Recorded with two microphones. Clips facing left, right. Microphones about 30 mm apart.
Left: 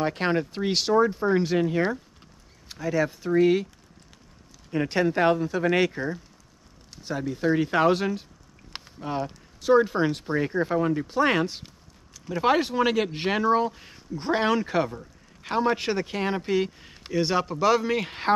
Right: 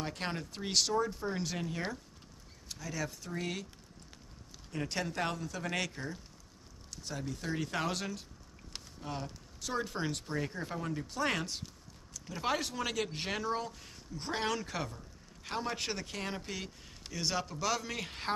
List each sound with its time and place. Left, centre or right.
0.0 s speech: left
4.6 s speech: left